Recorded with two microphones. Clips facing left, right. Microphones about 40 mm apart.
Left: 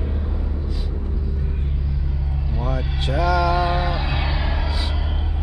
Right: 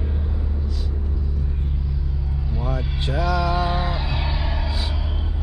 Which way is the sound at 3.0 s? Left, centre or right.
Left.